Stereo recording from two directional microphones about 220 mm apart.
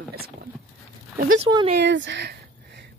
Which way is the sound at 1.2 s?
65° right (ahead or behind).